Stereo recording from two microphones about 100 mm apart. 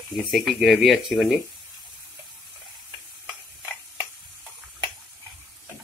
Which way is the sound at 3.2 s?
15° right (ahead or behind).